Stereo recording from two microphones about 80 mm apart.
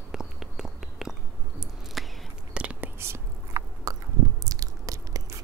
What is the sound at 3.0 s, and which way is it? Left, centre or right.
Whispering, right.